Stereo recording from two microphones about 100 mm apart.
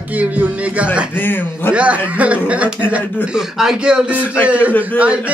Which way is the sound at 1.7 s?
10° right (ahead or behind).